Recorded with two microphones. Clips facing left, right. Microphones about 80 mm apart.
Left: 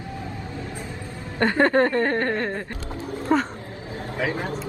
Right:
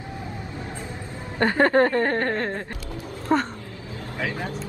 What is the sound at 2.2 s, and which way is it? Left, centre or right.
Speech, centre.